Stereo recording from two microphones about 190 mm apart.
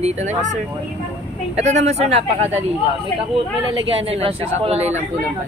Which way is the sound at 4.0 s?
30° right (ahead or behind).